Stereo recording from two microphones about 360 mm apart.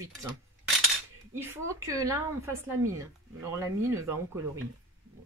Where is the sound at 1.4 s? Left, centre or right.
Centre.